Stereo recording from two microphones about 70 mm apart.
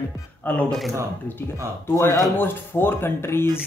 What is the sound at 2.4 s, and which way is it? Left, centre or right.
Speech, left.